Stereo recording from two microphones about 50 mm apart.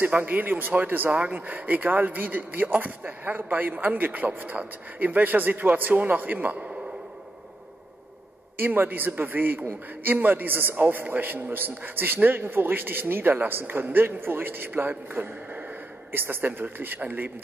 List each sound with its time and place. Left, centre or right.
0.0 s a man's voice: right
8.5 s a man's voice: right
14.7 s a man's voice: right
16.1 s a man's voice: right